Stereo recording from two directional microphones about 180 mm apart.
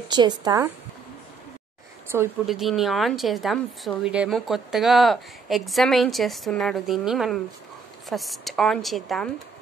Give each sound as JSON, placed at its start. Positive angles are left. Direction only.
{"t": 0.1, "sound": "speech", "side_deg": -25}
{"t": 2.4, "sound": "a woman's voice", "side_deg": 0}